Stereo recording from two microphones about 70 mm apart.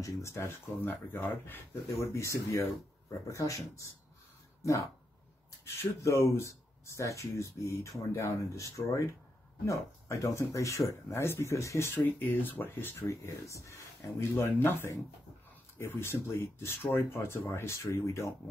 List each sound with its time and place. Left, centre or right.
0.0 s speech: left
0.7 s speech: left
1.5 s speech: left
5.8 s speech: left
13.1 s speech: left
14.2 s speech: left